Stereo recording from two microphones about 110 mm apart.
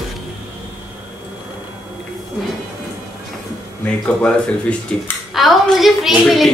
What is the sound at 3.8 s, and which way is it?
Speech, 10° left (ahead or behind).